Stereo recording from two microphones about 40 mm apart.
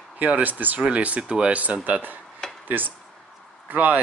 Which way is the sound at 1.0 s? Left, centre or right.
Right.